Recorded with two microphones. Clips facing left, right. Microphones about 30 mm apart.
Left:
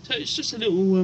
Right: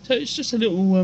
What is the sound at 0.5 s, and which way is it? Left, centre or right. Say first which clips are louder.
Speech: right 2 dB; centre.